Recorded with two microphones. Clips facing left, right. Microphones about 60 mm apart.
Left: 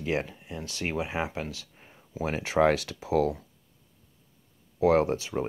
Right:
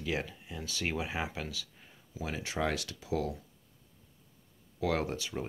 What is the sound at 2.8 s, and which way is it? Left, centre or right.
Speech, left.